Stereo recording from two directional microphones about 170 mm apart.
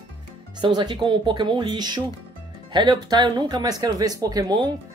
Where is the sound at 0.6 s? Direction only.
25° right (ahead or behind).